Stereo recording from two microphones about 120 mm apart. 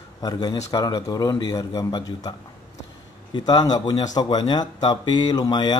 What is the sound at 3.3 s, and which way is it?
Speech, 35° left (ahead or behind).